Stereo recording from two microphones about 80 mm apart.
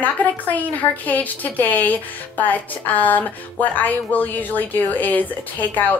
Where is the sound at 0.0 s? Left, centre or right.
Left.